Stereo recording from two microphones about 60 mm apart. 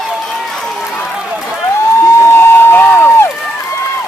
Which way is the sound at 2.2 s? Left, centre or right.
Left.